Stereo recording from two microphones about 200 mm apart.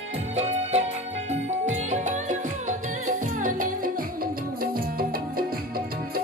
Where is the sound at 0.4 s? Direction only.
35° right (ahead or behind).